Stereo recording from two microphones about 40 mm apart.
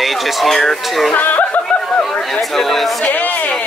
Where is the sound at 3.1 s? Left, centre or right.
Left.